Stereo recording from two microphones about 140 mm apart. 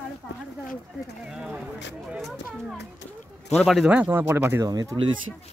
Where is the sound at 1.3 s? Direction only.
5° right (ahead or behind).